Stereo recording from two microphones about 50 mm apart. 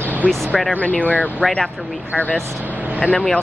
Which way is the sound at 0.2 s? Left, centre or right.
Left.